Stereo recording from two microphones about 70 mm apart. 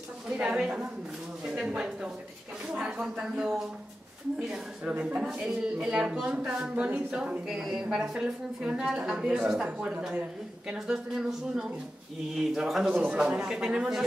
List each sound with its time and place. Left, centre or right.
0.3 s speech: centre
4.9 s speech: centre
7.4 s speech: centre
9.8 s speech: right
10.7 s a woman's voice: centre